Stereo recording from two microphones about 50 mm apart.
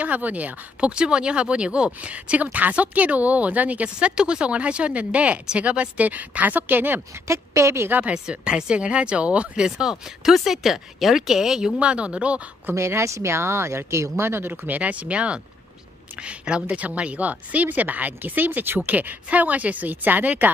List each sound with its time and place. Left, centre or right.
0.0 s speech: right
7.2 s a woman's voice: right
8.1 s speech: centre
9.7 s speech: centre
11.8 s speech: right
12.7 s speech: right
14.5 s a woman's voice: right